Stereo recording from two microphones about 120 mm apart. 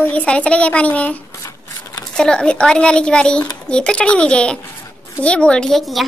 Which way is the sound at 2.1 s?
5° left (ahead or behind).